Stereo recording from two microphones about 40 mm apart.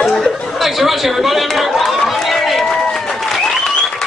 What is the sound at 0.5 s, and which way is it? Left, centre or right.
Speech, centre.